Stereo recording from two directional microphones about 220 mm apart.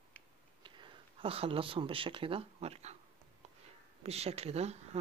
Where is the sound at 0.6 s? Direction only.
20° right (ahead or behind).